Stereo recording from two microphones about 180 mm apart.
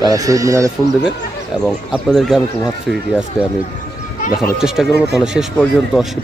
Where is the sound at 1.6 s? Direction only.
Centre (ahead or behind).